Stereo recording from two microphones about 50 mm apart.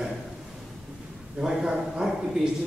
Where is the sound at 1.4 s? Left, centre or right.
Centre.